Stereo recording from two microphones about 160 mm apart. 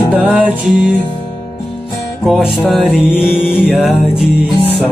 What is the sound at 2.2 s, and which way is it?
Music, 5° right (ahead or behind).